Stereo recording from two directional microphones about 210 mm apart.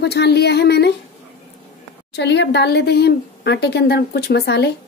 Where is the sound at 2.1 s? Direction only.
55° left (ahead or behind).